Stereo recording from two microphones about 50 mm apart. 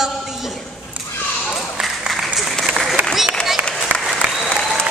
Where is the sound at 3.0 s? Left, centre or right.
Right.